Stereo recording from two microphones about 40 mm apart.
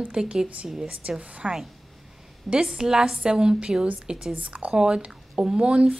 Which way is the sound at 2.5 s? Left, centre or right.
Right.